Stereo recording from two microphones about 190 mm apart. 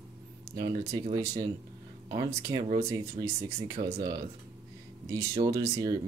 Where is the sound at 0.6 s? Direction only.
20° right (ahead or behind).